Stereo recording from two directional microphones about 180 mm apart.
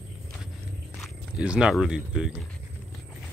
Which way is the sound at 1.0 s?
5° right (ahead or behind).